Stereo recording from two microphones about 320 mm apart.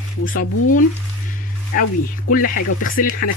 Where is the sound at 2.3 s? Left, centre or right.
Left.